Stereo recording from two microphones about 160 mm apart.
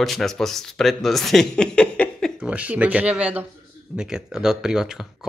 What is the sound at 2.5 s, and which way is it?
Speech, 10° right (ahead or behind).